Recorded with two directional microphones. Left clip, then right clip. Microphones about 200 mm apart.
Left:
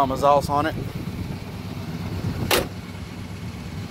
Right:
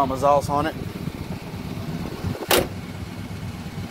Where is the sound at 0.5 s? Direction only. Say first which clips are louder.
Left 1 dB; 15° left (ahead or behind).